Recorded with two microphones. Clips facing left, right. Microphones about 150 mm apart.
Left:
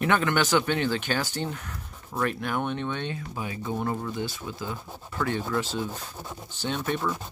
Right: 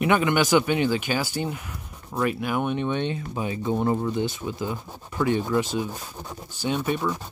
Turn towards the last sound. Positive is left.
turn(degrees=-15)  # may be behind; listen again after turning